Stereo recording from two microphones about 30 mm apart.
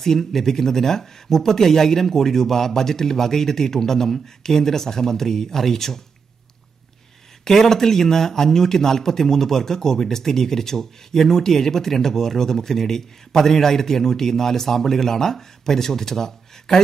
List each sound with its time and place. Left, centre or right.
0.0 s a man's voice: centre
7.4 s a man's voice: centre